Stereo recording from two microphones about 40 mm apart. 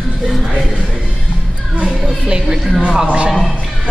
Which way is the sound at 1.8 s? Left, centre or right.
Centre.